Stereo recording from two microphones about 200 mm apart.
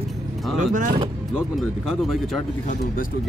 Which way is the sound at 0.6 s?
40° right (ahead or behind).